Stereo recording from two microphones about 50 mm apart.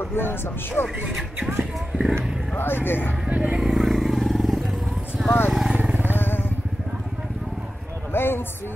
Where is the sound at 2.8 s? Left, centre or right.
Left.